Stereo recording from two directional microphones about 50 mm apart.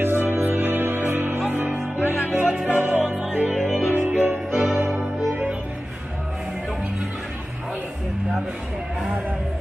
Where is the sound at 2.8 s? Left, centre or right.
Right.